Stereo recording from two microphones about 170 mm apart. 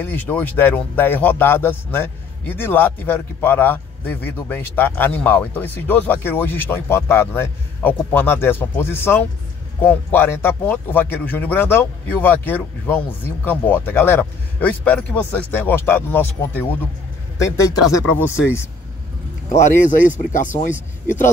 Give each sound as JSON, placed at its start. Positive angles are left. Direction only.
{"t": 0.0, "sound": "speech", "side_deg": 10}
{"t": 19.5, "sound": "speech", "side_deg": 45}